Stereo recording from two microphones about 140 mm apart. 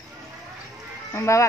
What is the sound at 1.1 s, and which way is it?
Speech, 20° left (ahead or behind).